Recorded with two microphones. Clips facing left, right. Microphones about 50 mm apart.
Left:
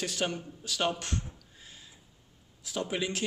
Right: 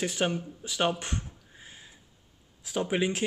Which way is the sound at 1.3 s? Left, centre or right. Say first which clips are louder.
Right 3 dB; right.